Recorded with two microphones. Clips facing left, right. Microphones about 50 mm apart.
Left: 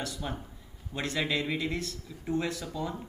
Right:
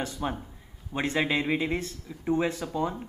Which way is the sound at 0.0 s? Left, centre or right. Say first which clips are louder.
Right 5 dB; right.